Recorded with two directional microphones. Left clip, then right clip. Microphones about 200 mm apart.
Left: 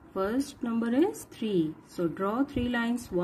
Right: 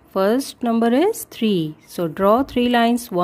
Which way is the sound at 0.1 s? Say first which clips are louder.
Right 12 dB; 55° right (ahead or behind).